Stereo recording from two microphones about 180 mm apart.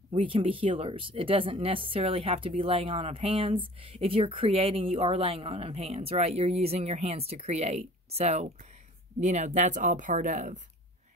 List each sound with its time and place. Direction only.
0.1 s speech: 30° right (ahead or behind)